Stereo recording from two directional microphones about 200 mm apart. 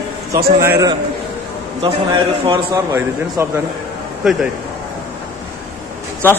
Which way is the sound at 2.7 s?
15° right (ahead or behind).